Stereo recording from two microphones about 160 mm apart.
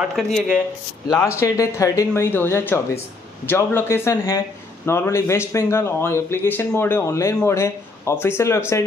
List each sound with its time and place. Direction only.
0.0 s speech: centre (ahead or behind)
1.0 s speech: 25° left (ahead or behind)